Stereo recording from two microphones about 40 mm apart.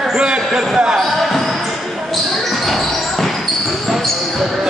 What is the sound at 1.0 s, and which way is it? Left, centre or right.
Basketball bounce, centre.